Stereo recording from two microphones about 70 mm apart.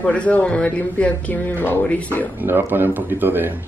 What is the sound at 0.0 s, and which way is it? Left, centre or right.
A man's voice, centre.